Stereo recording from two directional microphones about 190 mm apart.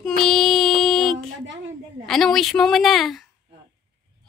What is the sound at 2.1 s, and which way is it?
Speech, centre (ahead or behind).